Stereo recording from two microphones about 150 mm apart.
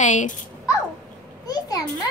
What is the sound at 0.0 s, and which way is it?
Speech, 55° left (ahead or behind).